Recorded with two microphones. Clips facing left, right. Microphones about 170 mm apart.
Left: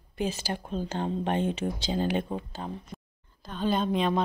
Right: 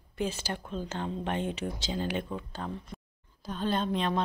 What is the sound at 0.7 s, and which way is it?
Speech, 35° left (ahead or behind).